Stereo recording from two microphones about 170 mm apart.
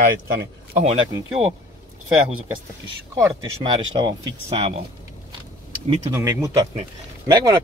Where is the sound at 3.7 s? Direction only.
30° right (ahead or behind).